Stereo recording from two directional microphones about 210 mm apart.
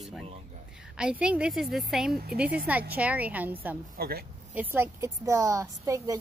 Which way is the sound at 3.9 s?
45° right (ahead or behind).